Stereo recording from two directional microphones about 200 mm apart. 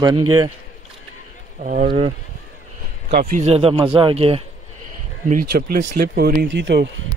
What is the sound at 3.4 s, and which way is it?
Speech, 30° right (ahead or behind).